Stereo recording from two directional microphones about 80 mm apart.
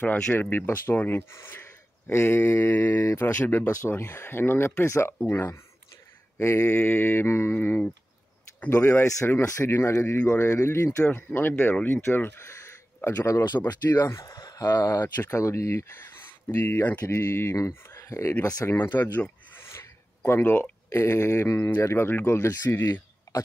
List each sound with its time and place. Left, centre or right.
0.0 s speech: left
3.3 s speech: left
8.8 s speech: left
14.2 s speech: left
15.3 s speech: left
18.7 s speech: left
20.2 s speech: left
23.3 s throat clearing: left